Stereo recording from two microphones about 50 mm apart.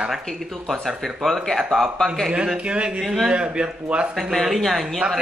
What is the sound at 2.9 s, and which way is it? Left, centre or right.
Speech, centre.